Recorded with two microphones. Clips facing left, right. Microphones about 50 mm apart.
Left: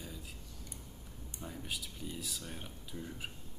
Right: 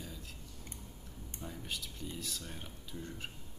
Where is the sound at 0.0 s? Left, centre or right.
Centre.